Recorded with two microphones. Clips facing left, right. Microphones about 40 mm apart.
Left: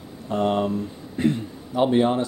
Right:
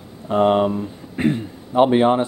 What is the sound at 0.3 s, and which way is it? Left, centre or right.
Speech, right.